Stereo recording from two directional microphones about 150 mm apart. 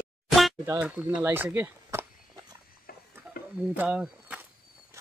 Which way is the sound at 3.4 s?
80° left.